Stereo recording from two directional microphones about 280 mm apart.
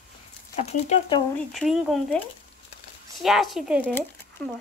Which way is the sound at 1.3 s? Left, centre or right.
Centre.